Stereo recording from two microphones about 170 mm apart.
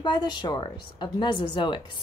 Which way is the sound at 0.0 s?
25° left (ahead or behind).